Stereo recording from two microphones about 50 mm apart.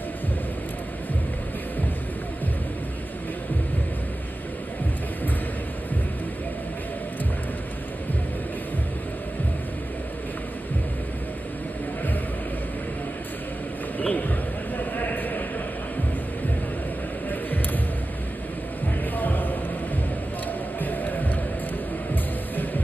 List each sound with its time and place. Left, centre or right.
13.9 s a sound: left
19.1 s music: left
20.8 s music: left